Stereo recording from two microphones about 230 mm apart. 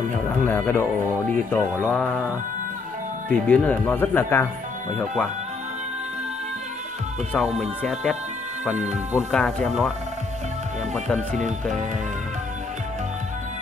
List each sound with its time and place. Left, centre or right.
0.3 s speech: centre
3.3 s speech: centre
7.3 s speech: centre
11.1 s speech: right